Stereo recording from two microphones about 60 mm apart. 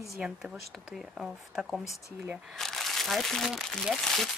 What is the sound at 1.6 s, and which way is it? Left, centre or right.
Speech, centre.